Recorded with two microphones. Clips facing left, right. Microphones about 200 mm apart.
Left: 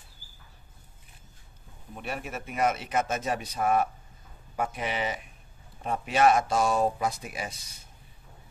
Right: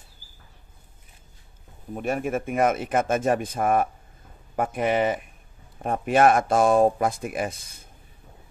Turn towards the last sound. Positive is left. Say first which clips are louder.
# right 8 dB
turn(degrees=-50)  # may be behind; listen again after turning